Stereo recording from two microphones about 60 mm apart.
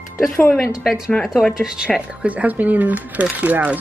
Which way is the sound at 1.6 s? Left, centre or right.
Centre.